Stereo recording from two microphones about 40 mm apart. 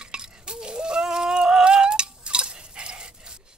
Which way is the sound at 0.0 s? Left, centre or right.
Centre.